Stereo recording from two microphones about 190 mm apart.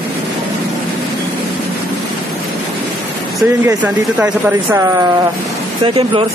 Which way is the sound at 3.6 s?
10° right (ahead or behind).